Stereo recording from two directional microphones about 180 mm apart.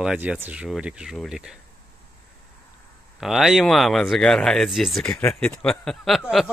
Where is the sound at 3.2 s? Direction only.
Centre (ahead or behind).